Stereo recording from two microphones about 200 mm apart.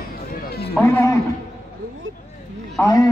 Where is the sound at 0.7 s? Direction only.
10° left (ahead or behind).